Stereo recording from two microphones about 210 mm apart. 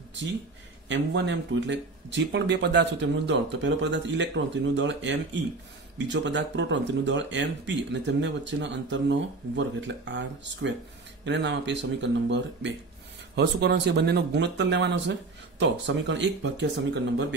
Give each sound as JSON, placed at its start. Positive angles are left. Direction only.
{"t": 0.8, "sound": "speech", "side_deg": -55}